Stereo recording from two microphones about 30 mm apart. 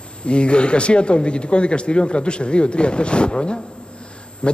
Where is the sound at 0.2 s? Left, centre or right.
Left.